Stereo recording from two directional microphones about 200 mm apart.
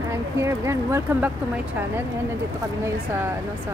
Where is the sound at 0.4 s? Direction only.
15° right (ahead or behind).